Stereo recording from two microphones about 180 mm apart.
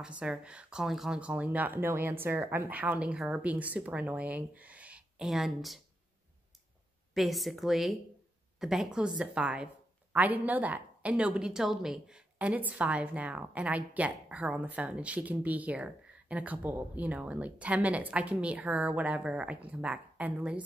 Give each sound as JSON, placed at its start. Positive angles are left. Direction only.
{"t": 0.2, "sound": "a woman's voice", "side_deg": -5}
{"t": 7.2, "sound": "a woman's voice", "side_deg": 0}